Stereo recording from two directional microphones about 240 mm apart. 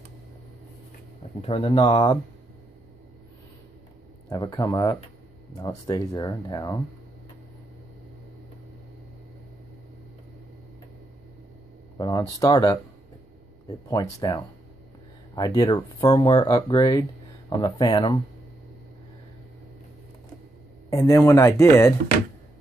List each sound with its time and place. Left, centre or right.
1.4 s speech: left
4.3 s speech: centre
12.0 s speech: centre
13.8 s speech: centre
20.9 s speech: centre